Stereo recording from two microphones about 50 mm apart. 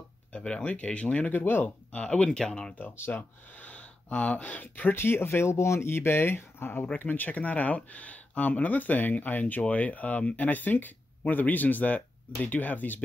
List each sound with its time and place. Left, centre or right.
0.3 s speech: left
2.2 s speech: centre
3.1 s speech: left
4.9 s speech: left